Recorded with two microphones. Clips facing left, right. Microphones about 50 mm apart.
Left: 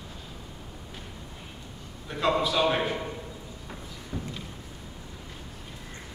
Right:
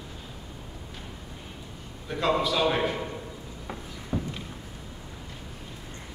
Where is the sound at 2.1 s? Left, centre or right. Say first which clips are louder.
Even; centre.